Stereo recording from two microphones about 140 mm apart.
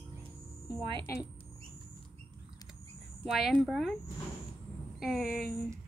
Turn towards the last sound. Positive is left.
turn(degrees=0)  # may be behind; listen again after turning